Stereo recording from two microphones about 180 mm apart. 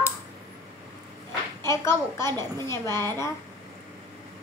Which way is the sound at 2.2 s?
20° right (ahead or behind).